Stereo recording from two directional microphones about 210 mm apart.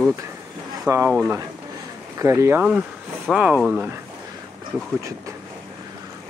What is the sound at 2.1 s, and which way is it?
Speech, 15° right (ahead or behind).